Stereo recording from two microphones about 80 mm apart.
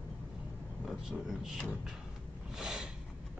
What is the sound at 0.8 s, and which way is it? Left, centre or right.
Speech, centre.